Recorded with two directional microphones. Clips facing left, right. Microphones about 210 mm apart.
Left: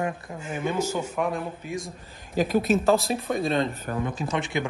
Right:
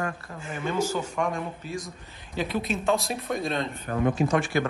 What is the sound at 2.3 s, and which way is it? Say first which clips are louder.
Speech: left 6 dB; 45° left (ahead or behind).